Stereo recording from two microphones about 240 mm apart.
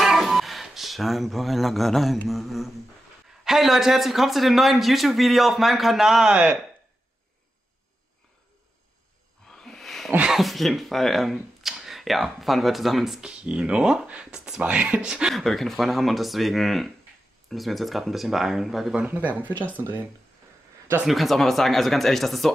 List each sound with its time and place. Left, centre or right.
0.0 s speech: centre
9.6 s speech: centre
20.9 s speech: centre